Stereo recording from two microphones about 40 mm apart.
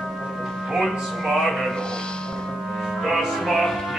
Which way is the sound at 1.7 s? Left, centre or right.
Left.